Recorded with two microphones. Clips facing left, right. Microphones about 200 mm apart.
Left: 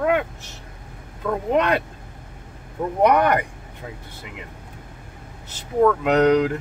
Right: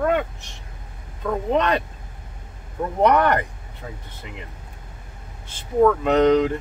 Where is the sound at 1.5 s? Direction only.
10° left (ahead or behind).